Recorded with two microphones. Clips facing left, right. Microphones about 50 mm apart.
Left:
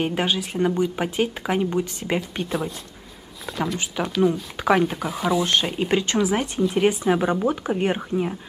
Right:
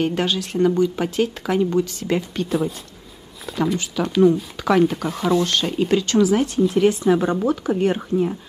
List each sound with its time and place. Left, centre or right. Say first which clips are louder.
0.0 s speech: right 2 dB; centre
3.4 s speech: right 4 dB; centre
3.7 s speech: right 4 dB; centre
5.4 s speech: right 1 dB; left